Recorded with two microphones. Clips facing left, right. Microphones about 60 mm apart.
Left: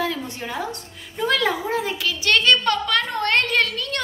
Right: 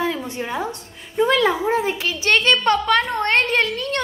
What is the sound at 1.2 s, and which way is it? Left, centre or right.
A woman's voice, right.